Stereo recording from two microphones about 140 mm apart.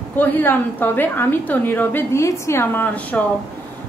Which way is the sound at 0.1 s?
15° left (ahead or behind).